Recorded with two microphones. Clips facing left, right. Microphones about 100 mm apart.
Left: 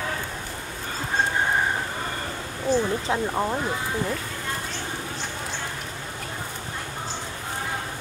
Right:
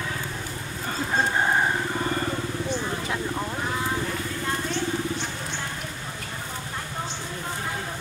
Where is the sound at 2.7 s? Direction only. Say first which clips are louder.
Left 10 dB; 35° left (ahead or behind).